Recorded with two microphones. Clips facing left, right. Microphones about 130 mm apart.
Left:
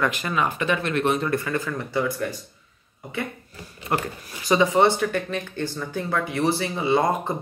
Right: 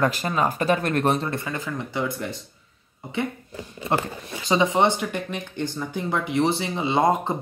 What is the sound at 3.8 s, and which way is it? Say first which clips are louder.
Speech: right 1 dB; 25° right (ahead or behind).